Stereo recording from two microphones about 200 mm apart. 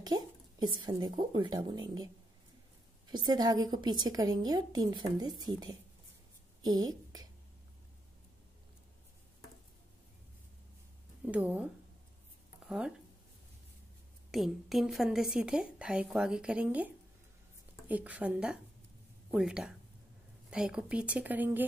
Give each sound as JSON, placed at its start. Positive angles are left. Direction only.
{"t": 0.0, "sound": "speech", "side_deg": -20}
{"t": 3.1, "sound": "a woman's voice", "side_deg": -20}
{"t": 11.2, "sound": "a woman's voice", "side_deg": -5}
{"t": 14.3, "sound": "a woman's voice", "side_deg": 0}